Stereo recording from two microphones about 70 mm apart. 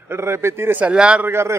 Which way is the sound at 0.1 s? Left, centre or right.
Right.